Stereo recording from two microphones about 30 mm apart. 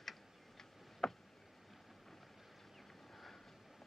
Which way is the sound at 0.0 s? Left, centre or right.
Centre.